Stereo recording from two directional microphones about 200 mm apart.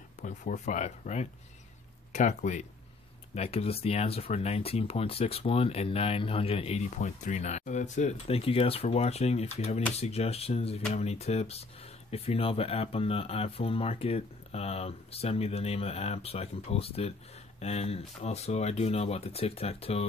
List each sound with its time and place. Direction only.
0.2 s speech: 40° left (ahead or behind)